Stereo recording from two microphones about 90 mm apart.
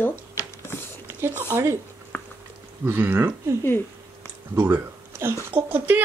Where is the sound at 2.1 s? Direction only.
25° left (ahead or behind).